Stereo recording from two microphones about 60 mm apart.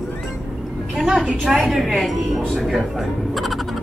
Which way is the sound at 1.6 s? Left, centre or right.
Centre.